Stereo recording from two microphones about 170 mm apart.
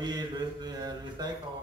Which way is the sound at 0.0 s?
25° right (ahead or behind).